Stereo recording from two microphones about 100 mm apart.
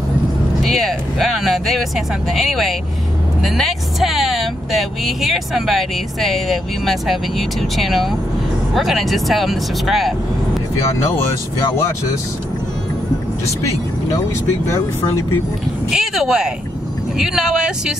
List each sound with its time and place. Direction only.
0.6 s speech: centre (ahead or behind)
15.9 s speech: 5° right (ahead or behind)